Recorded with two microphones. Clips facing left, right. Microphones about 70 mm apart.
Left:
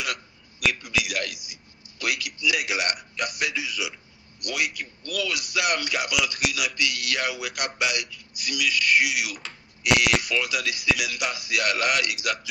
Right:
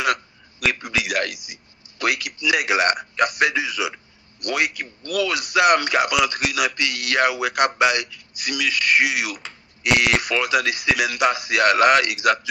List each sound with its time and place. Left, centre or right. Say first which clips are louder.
0.6 s a man's voice: right 2 dB; right
4.4 s a man's voice: right 5 dB; right